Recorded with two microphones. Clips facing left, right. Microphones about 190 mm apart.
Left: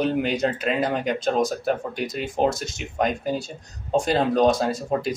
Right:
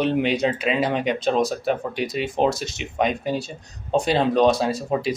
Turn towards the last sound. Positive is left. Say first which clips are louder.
# right 1 dB
turn(degrees=0)  # may be behind; listen again after turning